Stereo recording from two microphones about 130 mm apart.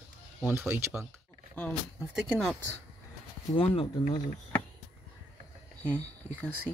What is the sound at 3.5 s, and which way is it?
Speech, 50° left (ahead or behind).